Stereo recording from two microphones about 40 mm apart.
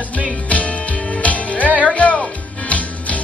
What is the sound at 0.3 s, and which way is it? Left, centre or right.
Music, left.